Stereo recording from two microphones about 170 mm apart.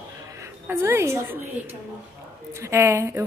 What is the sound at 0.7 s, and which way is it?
Speech, 15° right (ahead or behind).